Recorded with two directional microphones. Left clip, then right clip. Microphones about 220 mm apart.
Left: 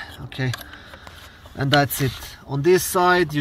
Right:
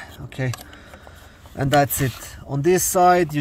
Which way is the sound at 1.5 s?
15° right (ahead or behind).